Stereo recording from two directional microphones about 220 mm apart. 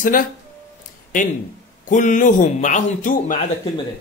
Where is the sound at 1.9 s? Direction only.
35° left (ahead or behind).